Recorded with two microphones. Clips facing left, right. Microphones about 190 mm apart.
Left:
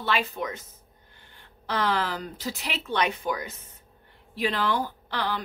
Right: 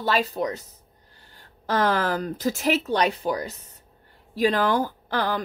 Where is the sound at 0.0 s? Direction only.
40° right (ahead or behind).